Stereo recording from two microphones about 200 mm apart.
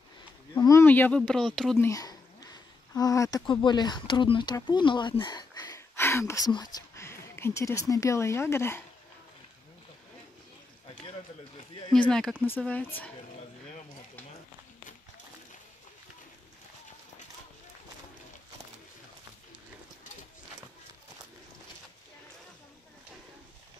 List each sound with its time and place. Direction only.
0.6 s speech: 15° left (ahead or behind)
1.9 s speech: 15° left (ahead or behind)
12.1 s speech: centre (ahead or behind)